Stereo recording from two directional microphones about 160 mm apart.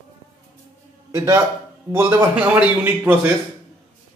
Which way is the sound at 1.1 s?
20° right (ahead or behind).